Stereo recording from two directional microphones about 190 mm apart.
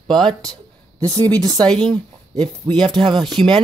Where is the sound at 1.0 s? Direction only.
20° right (ahead or behind).